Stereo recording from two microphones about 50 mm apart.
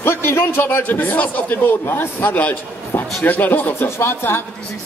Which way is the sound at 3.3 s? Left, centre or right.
Left.